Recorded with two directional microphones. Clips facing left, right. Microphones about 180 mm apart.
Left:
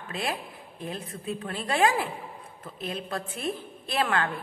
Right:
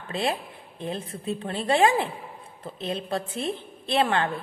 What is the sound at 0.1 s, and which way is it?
A woman's voice, 25° right (ahead or behind).